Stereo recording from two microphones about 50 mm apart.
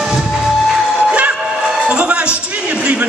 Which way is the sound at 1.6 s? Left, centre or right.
Right.